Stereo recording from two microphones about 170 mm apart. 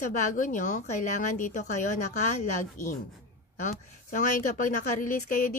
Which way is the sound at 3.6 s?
50° left (ahead or behind).